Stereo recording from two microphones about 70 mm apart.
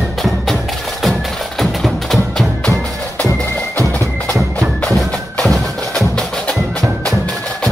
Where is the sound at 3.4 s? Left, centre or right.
Left.